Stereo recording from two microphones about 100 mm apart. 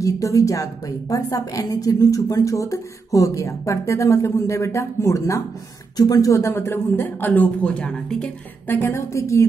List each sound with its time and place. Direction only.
0.0 s a woman's voice: 35° left (ahead or behind); by 8.3 s 10° left (ahead or behind)
8.6 s a man's voice: 20° left (ahead or behind)